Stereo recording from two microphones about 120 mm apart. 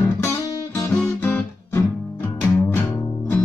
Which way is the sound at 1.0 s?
15° left (ahead or behind).